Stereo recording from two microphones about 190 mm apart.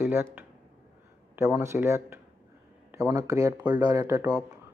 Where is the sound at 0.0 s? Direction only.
10° right (ahead or behind).